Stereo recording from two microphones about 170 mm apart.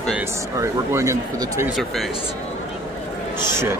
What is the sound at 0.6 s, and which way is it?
Speech, 15° right (ahead or behind).